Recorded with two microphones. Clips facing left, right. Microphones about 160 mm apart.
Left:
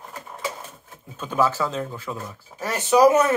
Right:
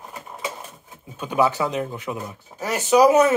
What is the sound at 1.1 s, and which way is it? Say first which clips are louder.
Speech: right 2 dB; 15° right (ahead or behind).